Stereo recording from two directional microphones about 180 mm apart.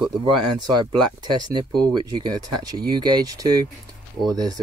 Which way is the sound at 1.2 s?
25° right (ahead or behind).